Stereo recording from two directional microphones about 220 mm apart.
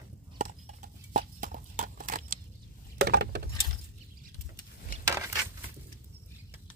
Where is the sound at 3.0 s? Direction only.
50° right (ahead or behind).